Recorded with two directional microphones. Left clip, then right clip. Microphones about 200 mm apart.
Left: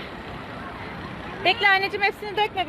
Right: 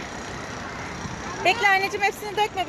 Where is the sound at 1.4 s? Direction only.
5° left (ahead or behind).